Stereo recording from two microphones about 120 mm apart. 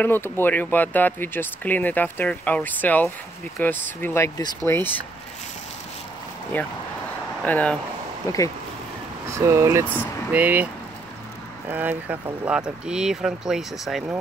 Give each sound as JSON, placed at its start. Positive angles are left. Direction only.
{"t": 0.0, "sound": "speech", "side_deg": 20}
{"t": 6.5, "sound": "speech", "side_deg": 15}
{"t": 9.3, "sound": "speech", "side_deg": -25}
{"t": 10.3, "sound": "speech", "side_deg": -15}
{"t": 11.7, "sound": "speech", "side_deg": -15}